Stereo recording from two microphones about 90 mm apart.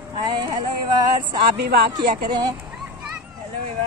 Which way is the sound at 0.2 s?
50° right (ahead or behind).